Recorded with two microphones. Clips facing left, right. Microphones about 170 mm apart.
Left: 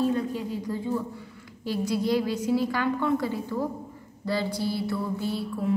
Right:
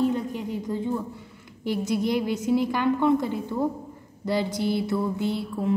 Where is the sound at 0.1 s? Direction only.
20° right (ahead or behind).